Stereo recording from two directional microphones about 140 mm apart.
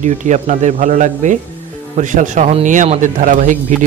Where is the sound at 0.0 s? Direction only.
60° right (ahead or behind).